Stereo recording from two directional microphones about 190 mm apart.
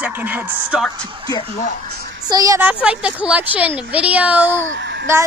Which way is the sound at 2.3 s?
15° right (ahead or behind).